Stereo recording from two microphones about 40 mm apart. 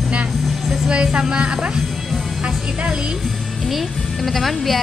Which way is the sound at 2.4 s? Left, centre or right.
Right.